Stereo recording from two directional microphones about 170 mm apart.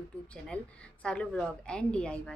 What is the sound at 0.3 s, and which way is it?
A woman's voice, 5° left (ahead or behind).